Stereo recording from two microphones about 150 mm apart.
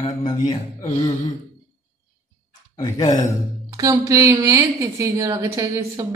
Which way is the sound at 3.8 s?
25° right (ahead or behind).